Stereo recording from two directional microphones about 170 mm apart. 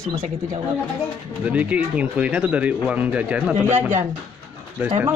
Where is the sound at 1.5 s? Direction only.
10° right (ahead or behind).